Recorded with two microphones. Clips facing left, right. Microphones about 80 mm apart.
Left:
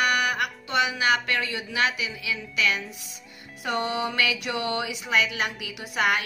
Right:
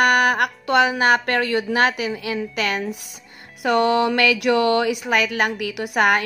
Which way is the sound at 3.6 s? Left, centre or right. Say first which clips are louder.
Right 10 dB; right.